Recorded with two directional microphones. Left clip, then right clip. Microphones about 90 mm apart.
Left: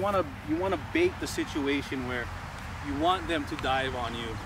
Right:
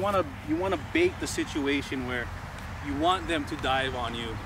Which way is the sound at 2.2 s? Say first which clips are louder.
Even; 40° left (ahead or behind).